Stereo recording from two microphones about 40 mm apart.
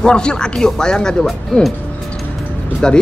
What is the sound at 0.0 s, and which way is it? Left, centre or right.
Speech, left.